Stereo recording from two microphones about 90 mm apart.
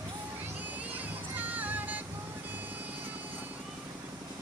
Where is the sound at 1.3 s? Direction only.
20° right (ahead or behind).